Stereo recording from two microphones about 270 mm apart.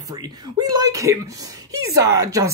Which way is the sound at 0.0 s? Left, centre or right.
Centre.